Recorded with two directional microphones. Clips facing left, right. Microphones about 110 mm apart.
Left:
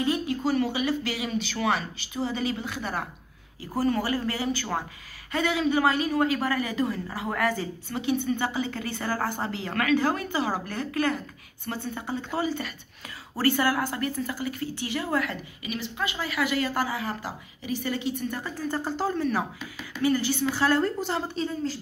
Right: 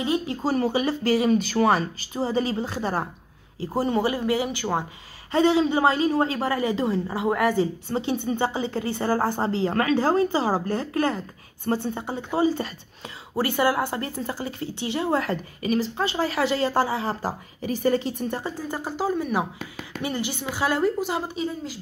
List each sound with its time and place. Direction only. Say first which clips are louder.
0.0 s a woman's voice: right 1 dB; 20° right (ahead or behind)
0.4 s a woman's voice: right 2 dB; 35° right (ahead or behind); by 4.8 s 20° right (ahead or behind)
5.3 s a woman's voice: right 5 dB; 30° right (ahead or behind)
12.4 s a woman's voice: right 6 dB; 30° right (ahead or behind)
13.4 s a woman's voice: right 2 dB; 20° right (ahead or behind); by 18.4 s 40° right (ahead or behind)
18.4 s a woman's voice: even; 15° right (ahead or behind)